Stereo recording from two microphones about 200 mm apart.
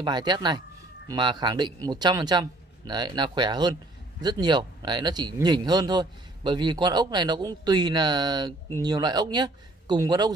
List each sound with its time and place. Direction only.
0.0 s speech: 20° right (ahead or behind)